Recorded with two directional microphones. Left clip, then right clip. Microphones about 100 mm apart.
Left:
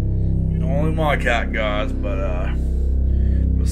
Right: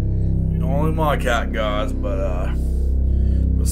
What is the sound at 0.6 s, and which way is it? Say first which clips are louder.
Music: right 1 dB; 35° right (ahead or behind).